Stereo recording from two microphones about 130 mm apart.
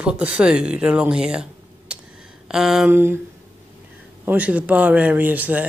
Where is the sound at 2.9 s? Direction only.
15° right (ahead or behind).